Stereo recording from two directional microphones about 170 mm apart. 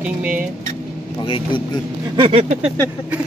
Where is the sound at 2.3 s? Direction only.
40° right (ahead or behind).